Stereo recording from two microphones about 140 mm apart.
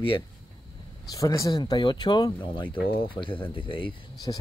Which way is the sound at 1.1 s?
25° left (ahead or behind).